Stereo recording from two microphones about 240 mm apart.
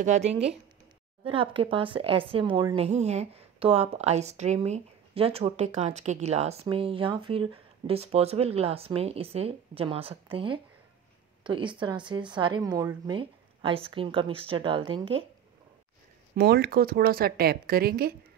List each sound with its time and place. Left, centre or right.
0.0 s speech: right
16.3 s speech: right